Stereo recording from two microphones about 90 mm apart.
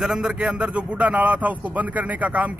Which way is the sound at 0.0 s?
5° right (ahead or behind).